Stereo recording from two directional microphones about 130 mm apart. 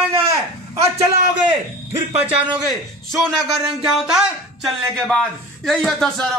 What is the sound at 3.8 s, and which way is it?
A man's voice, 5° right (ahead or behind).